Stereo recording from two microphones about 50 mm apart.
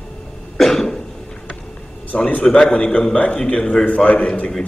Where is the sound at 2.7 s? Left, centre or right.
Left.